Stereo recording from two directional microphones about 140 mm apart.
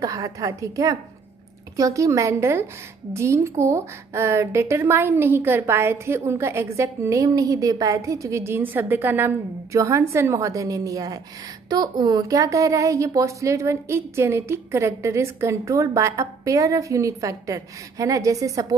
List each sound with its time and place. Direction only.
0.0 s a woman's voice: 25° right (ahead or behind)